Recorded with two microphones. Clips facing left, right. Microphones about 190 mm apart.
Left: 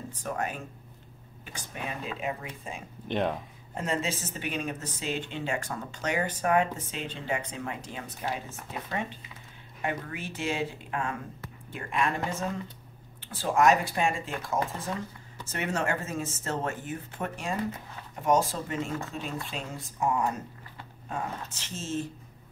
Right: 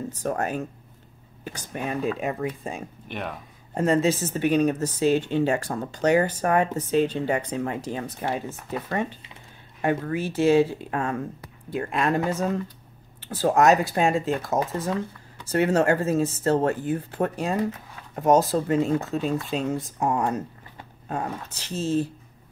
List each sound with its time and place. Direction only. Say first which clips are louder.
0.1 s speech: right 5 dB; 40° right (ahead or behind)
9.8 s speech: right 9 dB; 45° right (ahead or behind)